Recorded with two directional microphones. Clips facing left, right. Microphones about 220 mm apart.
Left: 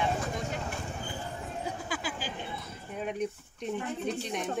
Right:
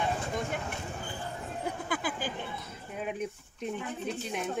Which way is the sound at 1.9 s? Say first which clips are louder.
Right 3 dB; 55° right (ahead or behind).